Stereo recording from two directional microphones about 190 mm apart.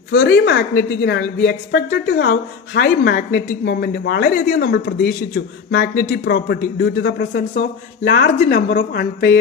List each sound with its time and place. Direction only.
0.1 s a woman's voice: 65° left (ahead or behind)